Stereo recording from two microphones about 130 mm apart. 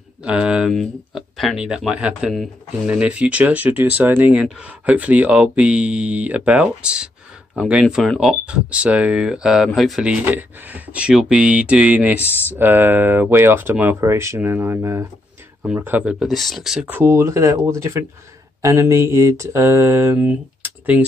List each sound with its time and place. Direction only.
0.2 s speech: 5° right (ahead or behind)
7.8 s speech: centre (ahead or behind); by 17.9 s 25° right (ahead or behind)
18.6 s mantra: 25° right (ahead or behind)